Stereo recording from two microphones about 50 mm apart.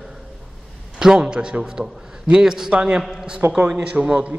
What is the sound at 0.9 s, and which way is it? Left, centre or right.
A man's voice, centre.